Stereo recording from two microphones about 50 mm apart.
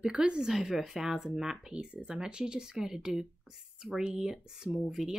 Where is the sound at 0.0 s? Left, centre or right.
Centre.